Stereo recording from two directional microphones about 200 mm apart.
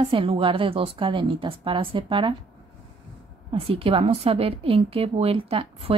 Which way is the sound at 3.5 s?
30° right (ahead or behind).